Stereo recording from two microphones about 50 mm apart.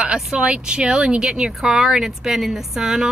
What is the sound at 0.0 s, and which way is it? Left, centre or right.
Speech, centre.